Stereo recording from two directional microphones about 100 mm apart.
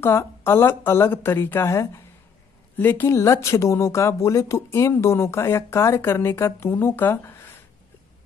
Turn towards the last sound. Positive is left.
turn(degrees=25)  # may be behind; listen again after turning